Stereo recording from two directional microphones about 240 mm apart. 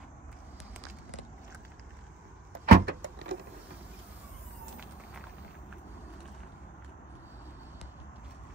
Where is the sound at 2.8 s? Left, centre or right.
Right.